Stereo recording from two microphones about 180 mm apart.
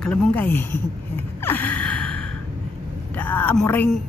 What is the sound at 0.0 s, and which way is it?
Speech, 5° left (ahead or behind).